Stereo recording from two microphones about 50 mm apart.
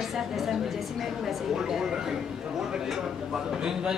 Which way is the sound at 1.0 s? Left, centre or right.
Centre.